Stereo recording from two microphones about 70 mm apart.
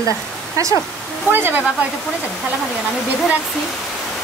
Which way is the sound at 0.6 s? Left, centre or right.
Right.